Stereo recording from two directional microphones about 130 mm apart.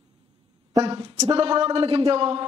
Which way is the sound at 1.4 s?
50° right (ahead or behind).